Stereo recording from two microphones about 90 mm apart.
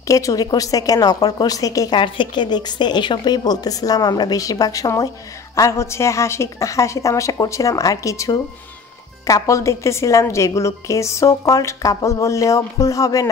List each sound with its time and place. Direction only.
0.1 s a woman's voice: 40° left (ahead or behind)
2.0 s a woman's voice: 65° left (ahead or behind); by 13.3 s 40° left (ahead or behind)